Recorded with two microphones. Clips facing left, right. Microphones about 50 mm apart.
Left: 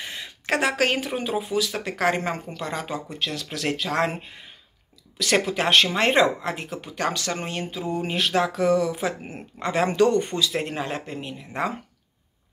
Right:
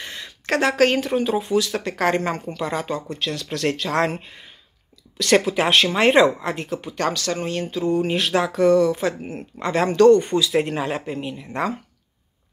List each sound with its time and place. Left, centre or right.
0.0 s speech: centre
7.1 s speech: left
7.7 s speech: centre
10.2 s speech: centre